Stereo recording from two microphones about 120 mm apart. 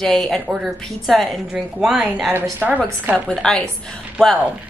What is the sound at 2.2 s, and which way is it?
Speech, 15° right (ahead or behind).